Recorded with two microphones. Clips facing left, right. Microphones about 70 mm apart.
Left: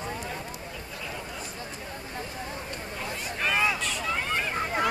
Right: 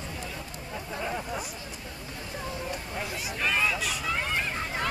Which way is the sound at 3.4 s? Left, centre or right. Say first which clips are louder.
Left 1 dB; centre.